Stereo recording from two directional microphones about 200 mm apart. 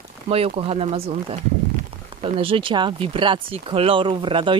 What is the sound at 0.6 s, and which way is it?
Speech, 30° right (ahead or behind).